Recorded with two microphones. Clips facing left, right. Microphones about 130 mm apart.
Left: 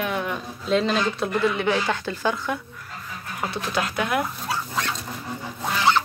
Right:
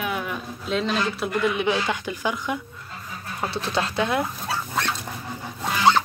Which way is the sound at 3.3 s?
30° right (ahead or behind).